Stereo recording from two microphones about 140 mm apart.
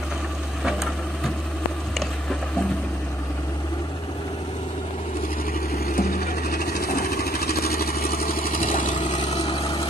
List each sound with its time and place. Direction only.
5.9 s a sound: 90° left
6.8 s vehicle: 90° left; by 9.4 s 50° left (ahead or behind)
9.4 s vehicle: 40° left (ahead or behind)